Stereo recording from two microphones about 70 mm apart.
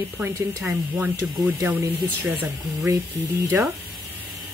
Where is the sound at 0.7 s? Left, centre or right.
Right.